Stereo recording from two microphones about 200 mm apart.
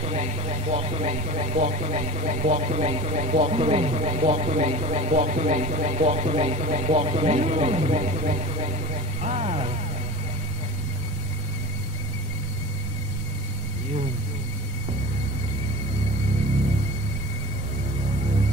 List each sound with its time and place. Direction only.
0.0 s speech: 35° right (ahead or behind)